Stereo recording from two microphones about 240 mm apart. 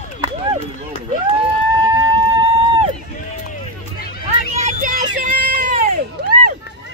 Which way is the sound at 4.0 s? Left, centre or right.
Left.